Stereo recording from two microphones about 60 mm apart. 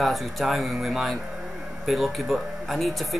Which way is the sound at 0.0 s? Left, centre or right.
Centre.